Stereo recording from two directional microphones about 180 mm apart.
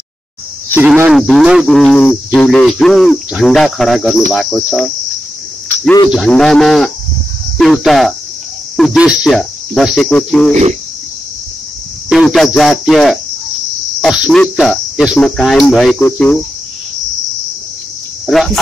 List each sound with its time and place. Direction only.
0.7 s speech: 10° right (ahead or behind)
6.0 s speech: centre (ahead or behind)
10.5 s speech: 40° right (ahead or behind)
12.1 s speech: centre (ahead or behind)
16.0 s cricket: 10° left (ahead or behind)
18.2 s speech: centre (ahead or behind)